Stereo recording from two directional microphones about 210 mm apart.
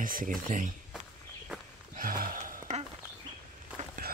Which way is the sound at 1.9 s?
40° right (ahead or behind).